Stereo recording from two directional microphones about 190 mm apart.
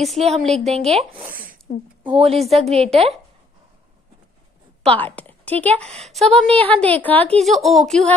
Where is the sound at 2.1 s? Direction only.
30° right (ahead or behind).